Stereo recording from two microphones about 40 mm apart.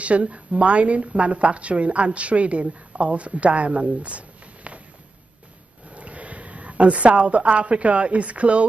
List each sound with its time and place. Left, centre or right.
0.0 s a woman's voice: right
4.7 s a sound: right
5.9 s a woman's voice: right